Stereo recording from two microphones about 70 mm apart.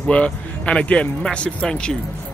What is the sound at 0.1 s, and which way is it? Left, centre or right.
Speech, centre.